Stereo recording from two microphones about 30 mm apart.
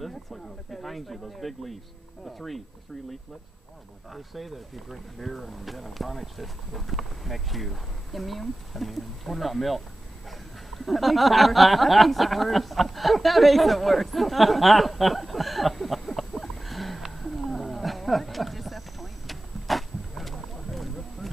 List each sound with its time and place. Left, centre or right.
0.1 s speech: centre
4.1 s speech: centre
17.0 s roaring cats: centre